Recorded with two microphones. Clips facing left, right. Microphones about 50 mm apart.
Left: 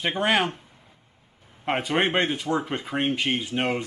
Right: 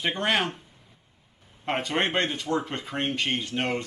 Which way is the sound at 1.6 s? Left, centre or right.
Centre.